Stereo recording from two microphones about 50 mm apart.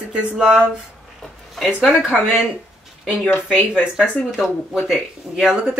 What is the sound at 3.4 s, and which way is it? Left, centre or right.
Speech, left.